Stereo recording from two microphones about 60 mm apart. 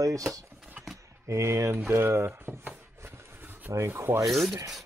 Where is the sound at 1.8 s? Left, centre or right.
Right.